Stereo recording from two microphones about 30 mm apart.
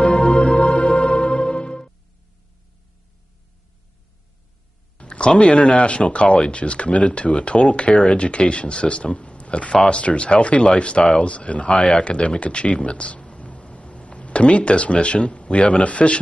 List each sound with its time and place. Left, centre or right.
0.4 s music: left
0.7 s music: left
4.9 s a sound: left
5.4 s speech: left
12.8 s a sound: left
15.8 s speech: left